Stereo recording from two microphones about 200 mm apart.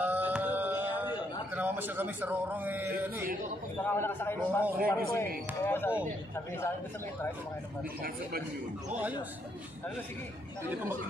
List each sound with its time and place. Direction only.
0.0 s a sound: 10° right (ahead or behind)
1.5 s a man's voice: 10° right (ahead or behind)
3.8 s a man's voice: 10° left (ahead or behind)
8.0 s speech: 50° right (ahead or behind)